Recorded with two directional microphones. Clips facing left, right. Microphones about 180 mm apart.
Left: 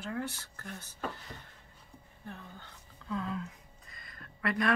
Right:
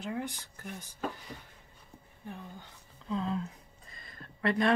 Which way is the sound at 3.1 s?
30° right (ahead or behind).